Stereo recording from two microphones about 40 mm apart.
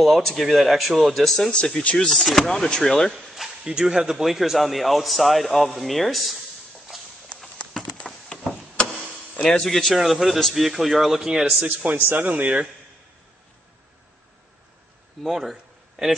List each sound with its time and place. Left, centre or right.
0.0 s a man's voice: centre
1.5 s speech: left
2.0 s a man's voice: centre
3.3 s a sound: centre
3.8 s a man's voice: centre
6.9 s clip-clop: centre
8.0 s a sound: left
9.6 s speech: centre
9.9 s a man's voice: centre
11.6 s speech: right
12.3 s speech: right
15.2 s a man's voice: centre